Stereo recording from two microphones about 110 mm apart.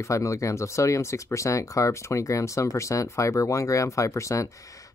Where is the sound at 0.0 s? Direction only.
30° left (ahead or behind).